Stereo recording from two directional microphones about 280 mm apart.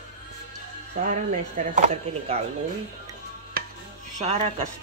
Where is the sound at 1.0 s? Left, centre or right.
Right.